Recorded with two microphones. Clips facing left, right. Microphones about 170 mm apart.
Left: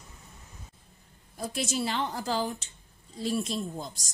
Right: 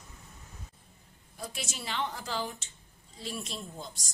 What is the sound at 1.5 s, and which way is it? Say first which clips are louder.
A woman's voice: left 10 dB; 40° left (ahead or behind).